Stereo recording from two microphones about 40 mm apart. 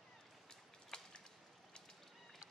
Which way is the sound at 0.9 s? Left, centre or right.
Left.